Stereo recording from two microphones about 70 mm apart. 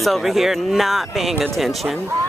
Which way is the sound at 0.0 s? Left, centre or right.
Centre.